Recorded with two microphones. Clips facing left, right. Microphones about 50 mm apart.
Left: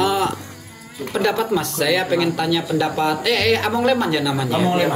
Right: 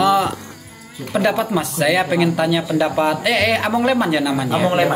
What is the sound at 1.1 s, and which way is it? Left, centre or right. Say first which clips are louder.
Speech: right 1 dB; centre.